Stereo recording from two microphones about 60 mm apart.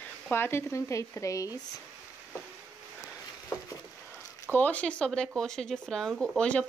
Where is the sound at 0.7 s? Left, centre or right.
Left.